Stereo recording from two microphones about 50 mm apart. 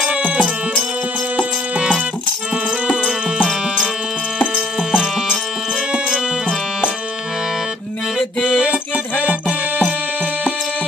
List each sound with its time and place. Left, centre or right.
0.0 s music: right
3.0 s music: right
4.6 s music: centre
9.2 s music: right